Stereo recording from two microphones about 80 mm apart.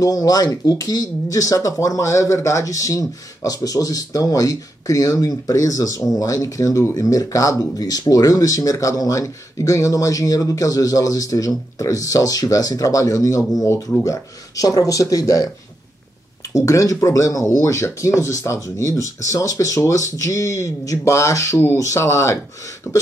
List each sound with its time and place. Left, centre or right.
0.0 s speech: left
16.5 s speech: left